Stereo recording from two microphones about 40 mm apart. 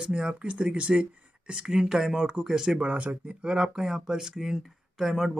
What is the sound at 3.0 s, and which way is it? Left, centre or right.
Speech, right.